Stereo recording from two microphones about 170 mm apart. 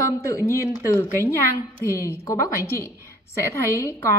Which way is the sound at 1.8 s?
15° left (ahead or behind).